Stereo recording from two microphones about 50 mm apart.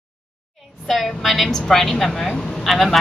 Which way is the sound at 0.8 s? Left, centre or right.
Centre.